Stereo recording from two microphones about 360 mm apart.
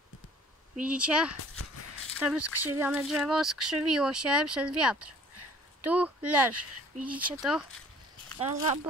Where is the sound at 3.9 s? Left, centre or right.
Centre.